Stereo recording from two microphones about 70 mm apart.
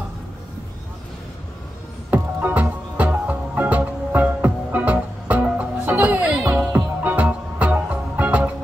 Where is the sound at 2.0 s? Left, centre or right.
Right.